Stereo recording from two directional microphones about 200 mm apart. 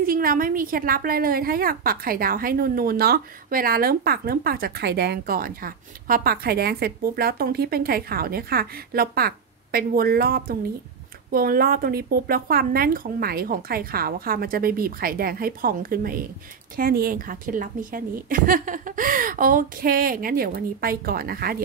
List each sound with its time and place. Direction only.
0.0 s a woman's voice: 45° right (ahead or behind)